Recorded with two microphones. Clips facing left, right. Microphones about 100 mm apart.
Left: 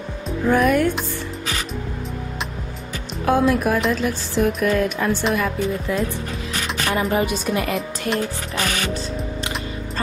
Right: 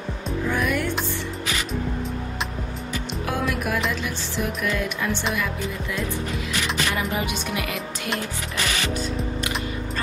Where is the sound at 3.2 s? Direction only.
35° left (ahead or behind).